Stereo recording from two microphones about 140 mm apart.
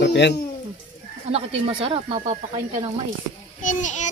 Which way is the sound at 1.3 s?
40° right (ahead or behind).